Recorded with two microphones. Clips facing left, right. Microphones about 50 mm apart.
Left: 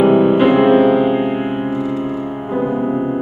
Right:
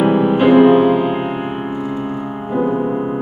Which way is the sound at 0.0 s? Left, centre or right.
Centre.